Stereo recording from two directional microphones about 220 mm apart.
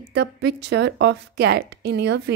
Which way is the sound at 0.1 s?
50° right (ahead or behind).